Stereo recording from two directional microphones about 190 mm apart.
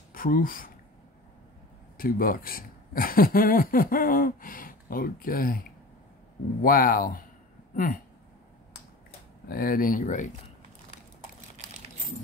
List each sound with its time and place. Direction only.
0.1 s speech: 50° left (ahead or behind)
2.0 s speech: 50° left (ahead or behind)
7.7 s a sound: 50° left (ahead or behind)
9.5 s speech: 50° left (ahead or behind)